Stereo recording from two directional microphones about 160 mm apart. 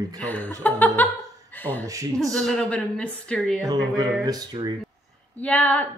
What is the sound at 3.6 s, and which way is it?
Speech, 25° right (ahead or behind).